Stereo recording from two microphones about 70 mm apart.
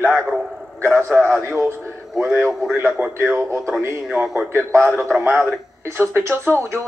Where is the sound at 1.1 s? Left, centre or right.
Centre.